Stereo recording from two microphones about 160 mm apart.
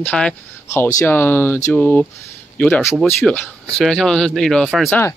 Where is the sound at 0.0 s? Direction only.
5° left (ahead or behind).